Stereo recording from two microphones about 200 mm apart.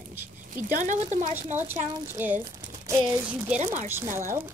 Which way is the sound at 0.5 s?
40° right (ahead or behind).